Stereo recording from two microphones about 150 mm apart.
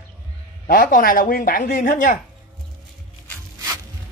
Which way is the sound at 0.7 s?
65° left (ahead or behind).